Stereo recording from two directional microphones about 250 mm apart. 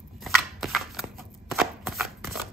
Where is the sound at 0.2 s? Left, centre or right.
Centre.